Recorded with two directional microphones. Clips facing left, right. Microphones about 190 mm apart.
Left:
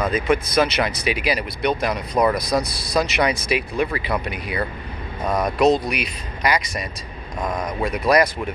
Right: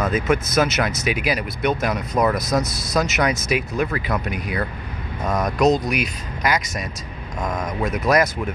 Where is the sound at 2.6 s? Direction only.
20° right (ahead or behind).